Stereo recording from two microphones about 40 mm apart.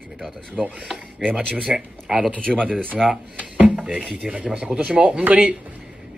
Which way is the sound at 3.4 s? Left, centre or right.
Right.